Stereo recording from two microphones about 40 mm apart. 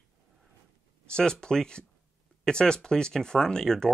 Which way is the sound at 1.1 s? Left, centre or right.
Left.